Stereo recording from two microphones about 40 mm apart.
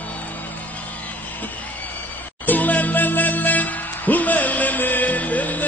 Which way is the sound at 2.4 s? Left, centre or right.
Left.